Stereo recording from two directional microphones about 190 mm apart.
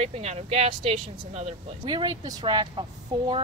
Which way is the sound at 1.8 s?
25° right (ahead or behind).